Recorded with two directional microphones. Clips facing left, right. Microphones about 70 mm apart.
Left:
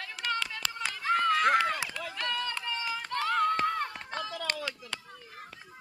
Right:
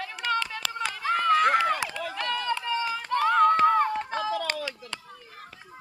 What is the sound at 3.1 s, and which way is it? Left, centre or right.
Run, right.